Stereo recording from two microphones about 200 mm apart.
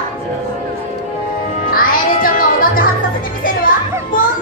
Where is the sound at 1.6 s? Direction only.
45° left (ahead or behind).